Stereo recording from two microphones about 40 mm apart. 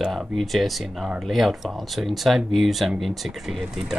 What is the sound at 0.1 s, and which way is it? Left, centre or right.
Speech, centre.